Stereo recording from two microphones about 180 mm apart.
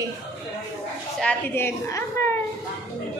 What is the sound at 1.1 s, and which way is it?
A woman's voice, 10° left (ahead or behind).